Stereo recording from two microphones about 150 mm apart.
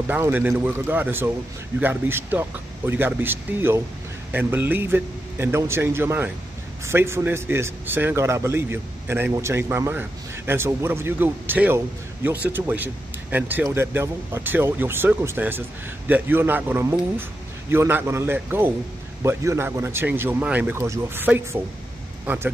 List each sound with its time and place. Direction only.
0.1 s a man's voice: 10° right (ahead or behind)